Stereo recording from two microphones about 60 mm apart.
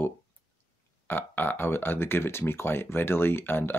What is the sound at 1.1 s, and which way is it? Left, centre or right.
Speech, left.